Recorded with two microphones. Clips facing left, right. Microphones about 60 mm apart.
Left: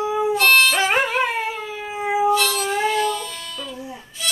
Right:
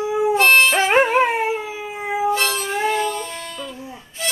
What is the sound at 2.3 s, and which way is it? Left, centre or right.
Music, right.